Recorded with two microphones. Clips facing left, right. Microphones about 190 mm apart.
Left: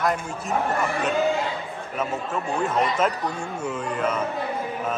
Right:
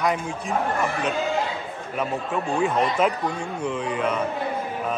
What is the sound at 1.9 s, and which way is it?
A man's voice, centre (ahead or behind).